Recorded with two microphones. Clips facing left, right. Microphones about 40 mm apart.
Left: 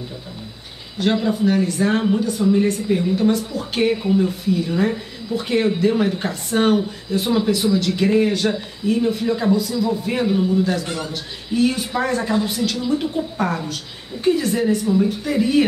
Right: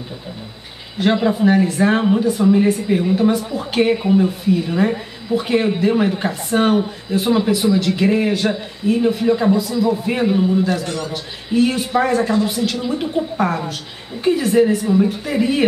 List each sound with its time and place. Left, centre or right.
0.9 s a woman's voice: centre
10.6 s a woman's voice: centre